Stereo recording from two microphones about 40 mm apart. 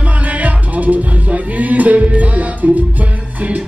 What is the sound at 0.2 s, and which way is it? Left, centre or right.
Music, right.